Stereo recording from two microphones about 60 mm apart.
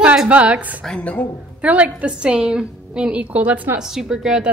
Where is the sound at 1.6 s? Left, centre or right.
Right.